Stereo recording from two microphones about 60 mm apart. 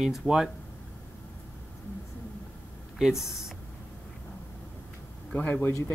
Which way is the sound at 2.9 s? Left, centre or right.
Centre.